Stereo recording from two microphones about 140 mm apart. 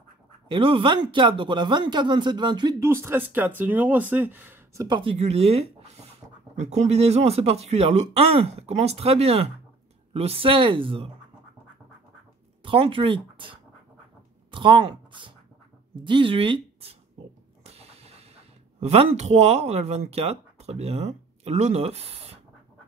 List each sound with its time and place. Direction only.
0.5 s speech: 35° right (ahead or behind)
2.8 s speech: 20° right (ahead or behind)
4.8 s speech: 35° right (ahead or behind)
5.1 s speech: 50° right (ahead or behind)
12.6 s speech: 40° right (ahead or behind)